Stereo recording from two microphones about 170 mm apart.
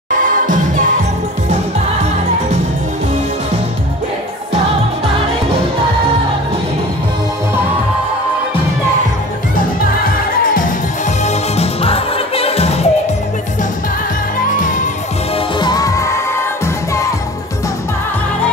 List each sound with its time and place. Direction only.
11.2 s music: 40° left (ahead or behind)
14.6 s music: 50° left (ahead or behind)
15.3 s music: 25° left (ahead or behind)